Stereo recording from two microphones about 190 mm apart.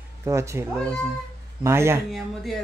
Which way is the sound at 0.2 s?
15° right (ahead or behind).